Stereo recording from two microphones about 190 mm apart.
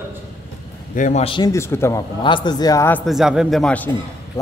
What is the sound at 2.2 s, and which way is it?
Speech, 25° left (ahead or behind).